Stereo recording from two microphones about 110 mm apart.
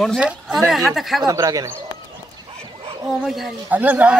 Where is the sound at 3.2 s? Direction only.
Centre (ahead or behind).